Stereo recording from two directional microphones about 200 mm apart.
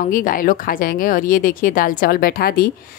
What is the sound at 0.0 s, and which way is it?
Speech, 45° left (ahead or behind).